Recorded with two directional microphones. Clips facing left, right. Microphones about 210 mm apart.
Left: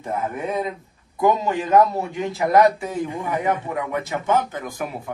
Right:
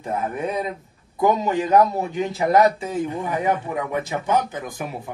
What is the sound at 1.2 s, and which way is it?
A man's voice, 20° right (ahead or behind).